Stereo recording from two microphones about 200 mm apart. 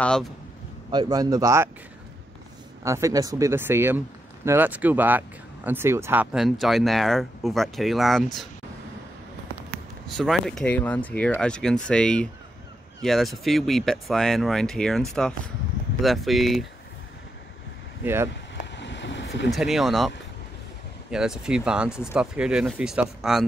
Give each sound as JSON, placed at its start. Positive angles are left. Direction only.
{"t": 0.0, "sound": "speech", "side_deg": 5}
{"t": 0.9, "sound": "speech", "side_deg": -20}
{"t": 2.8, "sound": "speech", "side_deg": -15}
{"t": 10.1, "sound": "speech", "side_deg": 0}
{"t": 18.0, "sound": "speech", "side_deg": -10}
{"t": 18.8, "sound": "vehicle", "side_deg": 60}
{"t": 19.5, "sound": "speech", "side_deg": 0}
{"t": 21.1, "sound": "speech", "side_deg": -5}